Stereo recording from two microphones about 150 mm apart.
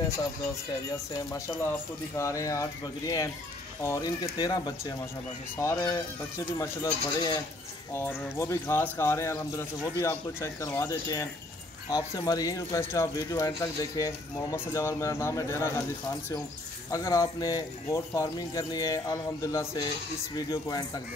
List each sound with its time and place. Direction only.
1.1 s speech: 20° left (ahead or behind)
16.9 s speech: 20° left (ahead or behind)